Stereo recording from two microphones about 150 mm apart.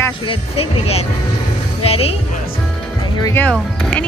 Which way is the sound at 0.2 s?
40° left (ahead or behind).